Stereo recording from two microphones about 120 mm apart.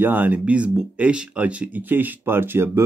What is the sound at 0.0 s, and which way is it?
Speech, 15° right (ahead or behind).